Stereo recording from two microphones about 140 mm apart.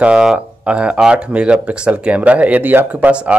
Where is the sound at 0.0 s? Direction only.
5° right (ahead or behind).